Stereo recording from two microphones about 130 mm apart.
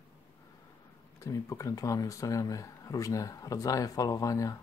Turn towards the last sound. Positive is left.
turn(degrees=25)  # may be behind; listen again after turning